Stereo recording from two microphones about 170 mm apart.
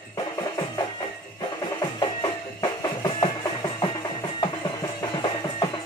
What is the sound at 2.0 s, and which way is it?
Music, 25° left (ahead or behind).